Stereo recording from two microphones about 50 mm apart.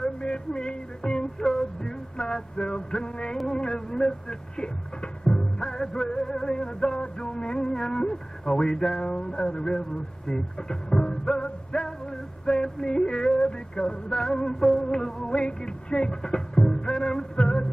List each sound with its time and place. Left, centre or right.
0.0 s music: centre
3.3 s speech: centre
6.5 s a sound: centre
9.1 s speech: centre
14.3 s music: centre